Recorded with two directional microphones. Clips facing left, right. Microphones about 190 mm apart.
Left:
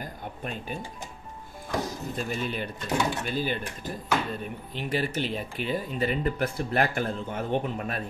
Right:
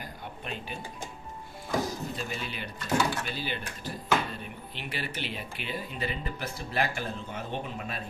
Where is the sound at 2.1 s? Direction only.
45° left (ahead or behind).